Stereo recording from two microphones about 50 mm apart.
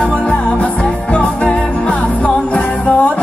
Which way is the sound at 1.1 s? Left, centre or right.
Left.